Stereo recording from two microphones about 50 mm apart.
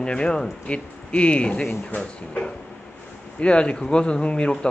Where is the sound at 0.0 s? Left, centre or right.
Centre.